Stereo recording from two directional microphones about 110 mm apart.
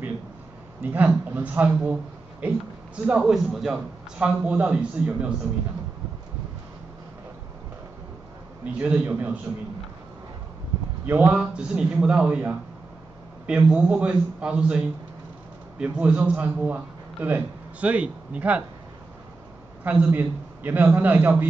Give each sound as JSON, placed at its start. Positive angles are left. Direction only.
{"t": 0.8, "sound": "a man's voice", "side_deg": -15}
{"t": 3.1, "sound": "a man's voice", "side_deg": -5}
{"t": 8.6, "sound": "a man's voice", "side_deg": -10}
{"t": 11.1, "sound": "a man's voice", "side_deg": -15}
{"t": 15.8, "sound": "a man's voice", "side_deg": -10}
{"t": 19.8, "sound": "a man's voice", "side_deg": -15}